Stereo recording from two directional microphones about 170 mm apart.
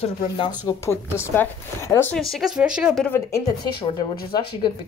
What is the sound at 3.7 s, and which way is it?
Speech, 25° left (ahead or behind).